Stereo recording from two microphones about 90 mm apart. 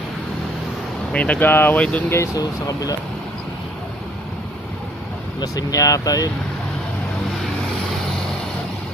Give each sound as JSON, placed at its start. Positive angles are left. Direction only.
{"t": 1.1, "sound": "speech", "side_deg": 15}
{"t": 1.8, "sound": "speech", "side_deg": 10}
{"t": 2.3, "sound": "speech", "side_deg": 45}
{"t": 5.4, "sound": "speech", "side_deg": 45}